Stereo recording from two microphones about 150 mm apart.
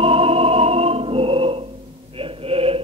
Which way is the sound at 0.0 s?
40° right (ahead or behind).